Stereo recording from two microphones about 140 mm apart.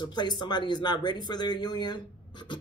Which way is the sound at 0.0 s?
30° left (ahead or behind).